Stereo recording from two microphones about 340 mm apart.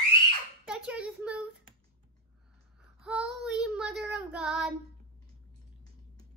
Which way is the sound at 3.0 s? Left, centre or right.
Centre.